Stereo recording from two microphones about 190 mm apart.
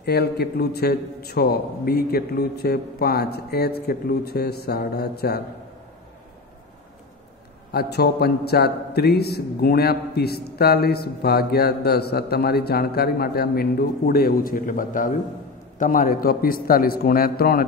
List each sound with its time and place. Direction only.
0.0 s a man's voice: 60° left (ahead or behind)
7.7 s a man's voice: 55° left (ahead or behind)